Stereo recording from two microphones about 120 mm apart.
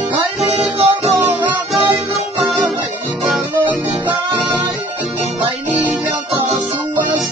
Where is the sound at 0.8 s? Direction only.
55° right (ahead or behind).